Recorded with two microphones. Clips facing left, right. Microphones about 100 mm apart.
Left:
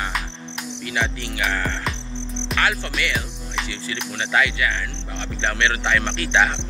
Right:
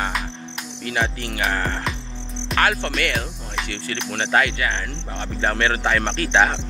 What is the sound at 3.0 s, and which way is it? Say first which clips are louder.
Speech: right 2 dB; 45° right (ahead or behind).